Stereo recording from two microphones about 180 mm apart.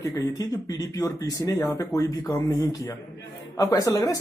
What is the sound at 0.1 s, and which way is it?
Speech, 20° left (ahead or behind).